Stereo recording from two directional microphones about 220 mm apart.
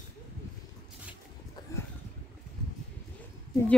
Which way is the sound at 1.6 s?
20° left (ahead or behind).